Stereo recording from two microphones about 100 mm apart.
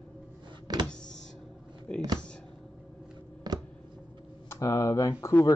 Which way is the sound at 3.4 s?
40° right (ahead or behind).